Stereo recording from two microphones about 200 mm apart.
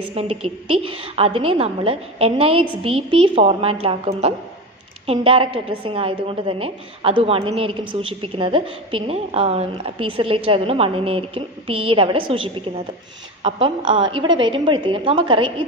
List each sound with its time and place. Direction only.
0.1 s a woman's voice: 30° right (ahead or behind)